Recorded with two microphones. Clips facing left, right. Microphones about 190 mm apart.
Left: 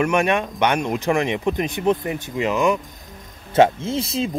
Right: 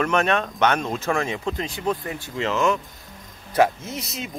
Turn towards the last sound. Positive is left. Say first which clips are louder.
# left 9 dB
turn(degrees=30)  # may be behind; listen again after turning